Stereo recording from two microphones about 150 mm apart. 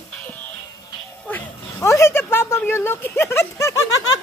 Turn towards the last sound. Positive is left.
turn(degrees=20)  # may be behind; listen again after turning